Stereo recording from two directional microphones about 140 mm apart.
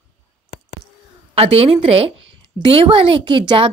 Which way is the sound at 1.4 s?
45° right (ahead or behind).